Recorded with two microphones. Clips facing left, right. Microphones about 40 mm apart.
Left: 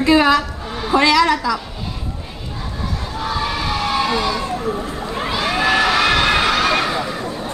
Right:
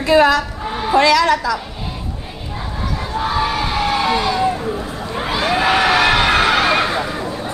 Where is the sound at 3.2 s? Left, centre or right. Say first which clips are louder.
Right 2 dB; centre.